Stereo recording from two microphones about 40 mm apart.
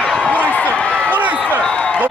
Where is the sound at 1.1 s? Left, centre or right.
Right.